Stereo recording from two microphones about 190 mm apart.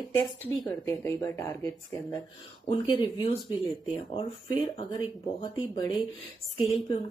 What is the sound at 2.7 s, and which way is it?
Speech, 25° left (ahead or behind).